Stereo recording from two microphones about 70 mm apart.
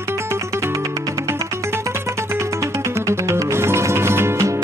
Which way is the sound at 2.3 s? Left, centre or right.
Right.